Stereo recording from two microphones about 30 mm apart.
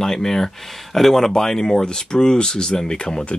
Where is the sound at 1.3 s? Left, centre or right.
Centre.